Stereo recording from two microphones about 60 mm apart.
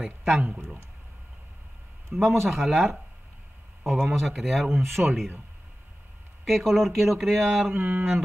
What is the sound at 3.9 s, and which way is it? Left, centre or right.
Speech, centre.